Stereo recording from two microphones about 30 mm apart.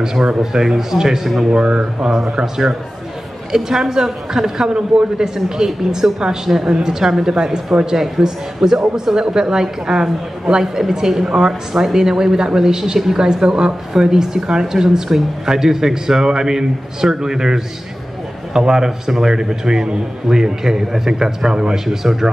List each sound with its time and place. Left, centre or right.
0.0 s speech: right; by 1.5 s centre
1.5 s speech: right
4.6 s speech: right
21.7 s speech: centre